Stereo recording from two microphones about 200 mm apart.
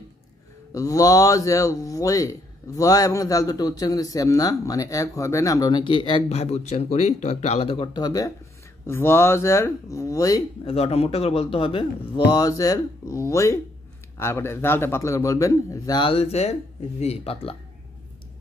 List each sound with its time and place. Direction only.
0.7 s speech: 15° left (ahead or behind)
10.7 s a man's voice: 30° left (ahead or behind)